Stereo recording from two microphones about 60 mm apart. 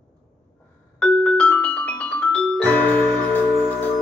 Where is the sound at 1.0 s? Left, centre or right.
Centre.